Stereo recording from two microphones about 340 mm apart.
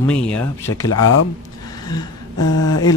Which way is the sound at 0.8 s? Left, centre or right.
Left.